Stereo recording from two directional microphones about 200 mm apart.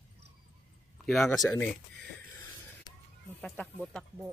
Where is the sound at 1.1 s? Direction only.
Centre (ahead or behind).